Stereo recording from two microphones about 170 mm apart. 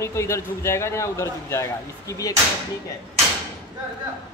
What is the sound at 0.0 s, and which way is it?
A man's voice, 15° left (ahead or behind).